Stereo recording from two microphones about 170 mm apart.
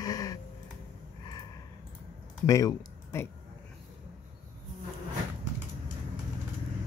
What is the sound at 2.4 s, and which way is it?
Speech, 20° left (ahead or behind).